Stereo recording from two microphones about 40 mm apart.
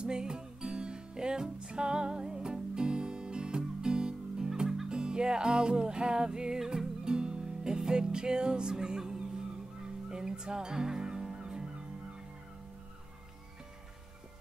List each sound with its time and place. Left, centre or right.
0.0 s music: right
6.6 s music: centre
7.1 s music: right